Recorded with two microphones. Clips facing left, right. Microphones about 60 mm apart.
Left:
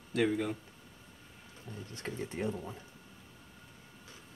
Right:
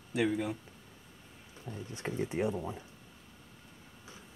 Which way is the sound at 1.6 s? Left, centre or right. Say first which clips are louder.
Right 3 dB; centre.